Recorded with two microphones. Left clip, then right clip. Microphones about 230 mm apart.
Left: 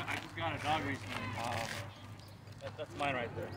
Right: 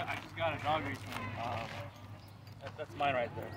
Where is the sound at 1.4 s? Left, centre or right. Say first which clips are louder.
Left 1 dB; left.